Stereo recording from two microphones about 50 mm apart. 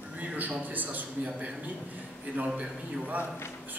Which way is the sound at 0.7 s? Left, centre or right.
Right.